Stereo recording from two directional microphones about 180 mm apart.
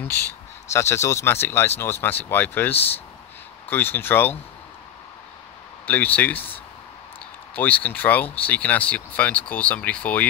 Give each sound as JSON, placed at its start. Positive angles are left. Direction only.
{"t": 0.7, "sound": "speech", "side_deg": 15}
{"t": 5.9, "sound": "speech", "side_deg": 10}